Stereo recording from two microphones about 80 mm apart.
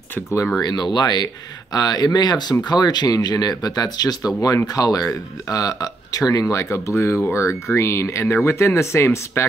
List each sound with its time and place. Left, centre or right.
0.6 s speech: left